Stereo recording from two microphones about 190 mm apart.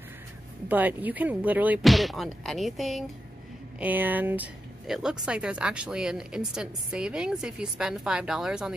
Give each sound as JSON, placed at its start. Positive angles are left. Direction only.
{"t": 0.7, "sound": "speech", "side_deg": -10}